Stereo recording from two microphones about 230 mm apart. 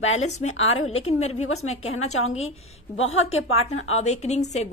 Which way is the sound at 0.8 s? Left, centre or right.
Left.